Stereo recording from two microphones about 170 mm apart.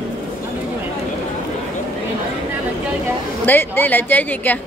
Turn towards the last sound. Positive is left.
turn(degrees=10)  # may be behind; listen again after turning